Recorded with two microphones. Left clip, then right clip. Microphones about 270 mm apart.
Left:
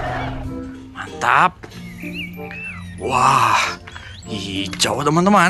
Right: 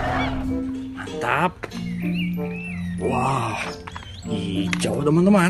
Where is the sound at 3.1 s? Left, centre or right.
Left.